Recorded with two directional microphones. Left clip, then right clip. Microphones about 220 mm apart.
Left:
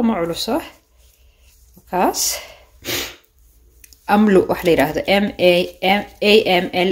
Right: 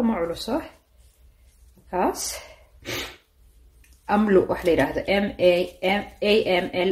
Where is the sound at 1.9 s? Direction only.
35° left (ahead or behind).